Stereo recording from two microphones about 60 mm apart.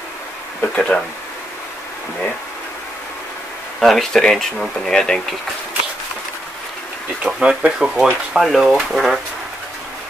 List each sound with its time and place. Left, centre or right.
0.6 s speech: centre
3.8 s speech: centre
7.2 s speech: centre